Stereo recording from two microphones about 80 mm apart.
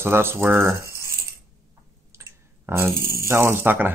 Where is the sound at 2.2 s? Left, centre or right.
Right.